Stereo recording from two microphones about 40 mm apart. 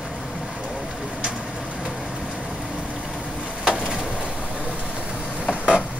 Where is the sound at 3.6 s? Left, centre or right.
Centre.